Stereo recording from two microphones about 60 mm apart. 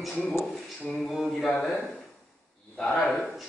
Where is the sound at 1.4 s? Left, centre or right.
Left.